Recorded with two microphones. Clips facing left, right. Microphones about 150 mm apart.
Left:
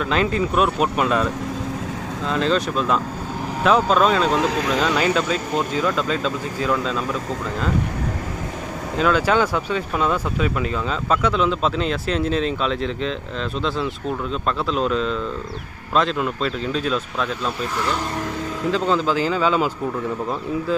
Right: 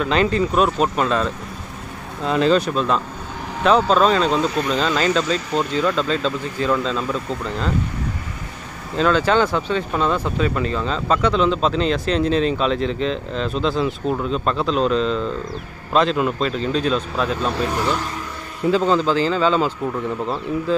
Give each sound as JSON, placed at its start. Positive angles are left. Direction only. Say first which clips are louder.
{"t": 0.0, "sound": "speech", "louder": "right 2 dB", "side_deg": 0}
{"t": 2.2, "sound": "speech", "louder": "right 4 dB", "side_deg": -5}
{"t": 4.4, "sound": "speech", "louder": "even", "side_deg": 90}
{"t": 4.7, "sound": "speech", "louder": "even", "side_deg": 10}
{"t": 8.9, "sound": "speech", "louder": "right 1 dB", "side_deg": 10}